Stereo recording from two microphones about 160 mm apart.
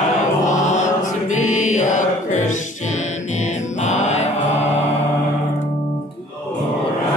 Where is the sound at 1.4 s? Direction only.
50° left (ahead or behind).